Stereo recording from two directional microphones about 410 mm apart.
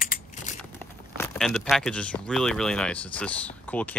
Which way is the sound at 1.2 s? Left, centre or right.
Centre.